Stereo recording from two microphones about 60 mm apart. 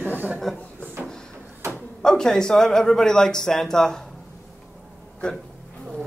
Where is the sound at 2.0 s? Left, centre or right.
Centre.